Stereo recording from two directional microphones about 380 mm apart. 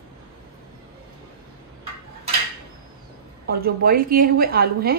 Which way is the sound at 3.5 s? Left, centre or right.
Right.